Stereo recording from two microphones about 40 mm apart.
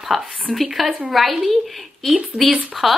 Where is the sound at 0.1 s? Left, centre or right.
Centre.